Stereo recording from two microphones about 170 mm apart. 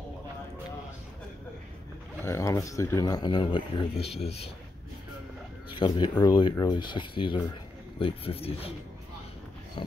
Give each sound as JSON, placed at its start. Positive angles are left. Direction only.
{"t": 2.2, "sound": "speech", "side_deg": 15}
{"t": 5.7, "sound": "speech", "side_deg": 30}
{"t": 9.8, "sound": "speech", "side_deg": 30}